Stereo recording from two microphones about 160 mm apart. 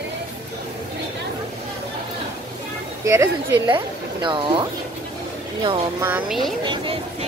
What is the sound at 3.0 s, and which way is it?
Speech, 15° right (ahead or behind).